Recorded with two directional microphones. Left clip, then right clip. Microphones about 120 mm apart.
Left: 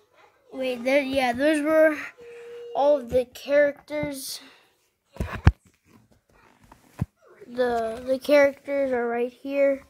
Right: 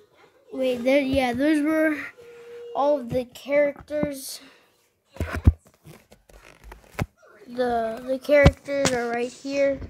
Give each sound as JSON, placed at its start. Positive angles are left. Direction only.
{"t": 0.5, "sound": "a child's voice", "side_deg": 25}
{"t": 2.7, "sound": "speech", "side_deg": 40}
{"t": 5.1, "sound": "a sound", "side_deg": -5}
{"t": 7.5, "sound": "speech", "side_deg": 35}
{"t": 8.1, "sound": "a child's voice", "side_deg": 75}
{"t": 8.6, "sound": "speech", "side_deg": 45}